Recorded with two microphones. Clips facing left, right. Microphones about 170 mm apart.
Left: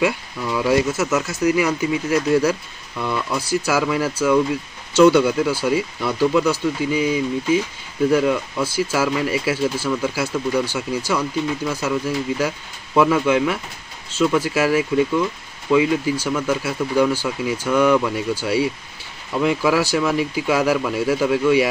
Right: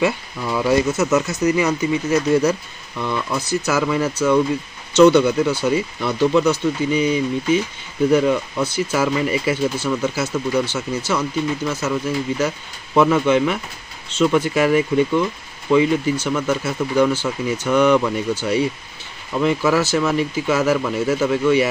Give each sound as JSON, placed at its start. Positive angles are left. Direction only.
{"t": 0.4, "sound": "speech", "side_deg": 0}